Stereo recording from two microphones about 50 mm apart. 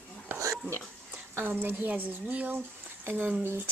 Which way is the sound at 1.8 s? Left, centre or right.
Right.